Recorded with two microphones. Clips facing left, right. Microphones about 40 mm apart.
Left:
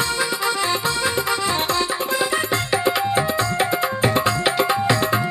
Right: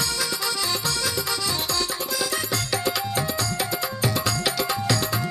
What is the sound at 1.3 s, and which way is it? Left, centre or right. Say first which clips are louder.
Music: left 6 dB; left.